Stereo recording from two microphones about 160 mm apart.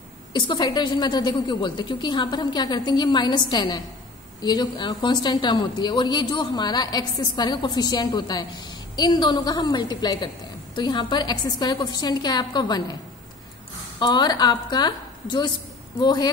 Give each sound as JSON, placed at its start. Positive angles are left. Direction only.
{"t": 0.3, "sound": "a woman's voice", "side_deg": 30}
{"t": 13.9, "sound": "a woman's voice", "side_deg": 25}